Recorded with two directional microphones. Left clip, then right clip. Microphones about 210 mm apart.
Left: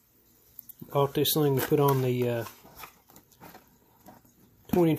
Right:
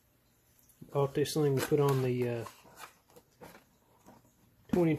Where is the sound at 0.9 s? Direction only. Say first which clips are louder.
Left 5 dB; 35° left (ahead or behind).